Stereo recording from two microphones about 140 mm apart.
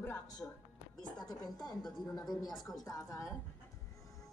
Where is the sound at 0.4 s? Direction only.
20° left (ahead or behind).